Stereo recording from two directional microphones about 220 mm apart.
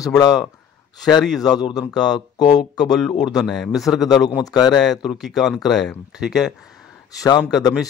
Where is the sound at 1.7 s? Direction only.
15° left (ahead or behind).